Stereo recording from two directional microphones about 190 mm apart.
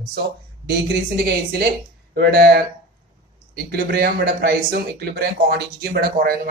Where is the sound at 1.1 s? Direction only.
55° right (ahead or behind).